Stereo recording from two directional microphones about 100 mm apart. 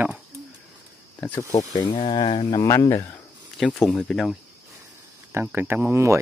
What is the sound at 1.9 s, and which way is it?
Speech, 65° left (ahead or behind).